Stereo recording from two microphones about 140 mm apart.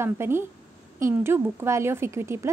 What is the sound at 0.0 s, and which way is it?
A woman's voice, 15° right (ahead or behind).